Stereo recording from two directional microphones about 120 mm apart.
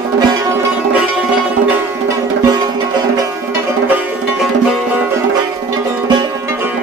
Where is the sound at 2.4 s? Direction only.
35° right (ahead or behind).